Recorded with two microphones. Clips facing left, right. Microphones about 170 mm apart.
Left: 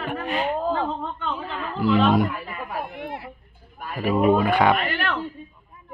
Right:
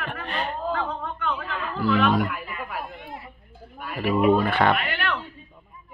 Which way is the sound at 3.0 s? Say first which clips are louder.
Left 6 dB; 75° left (ahead or behind).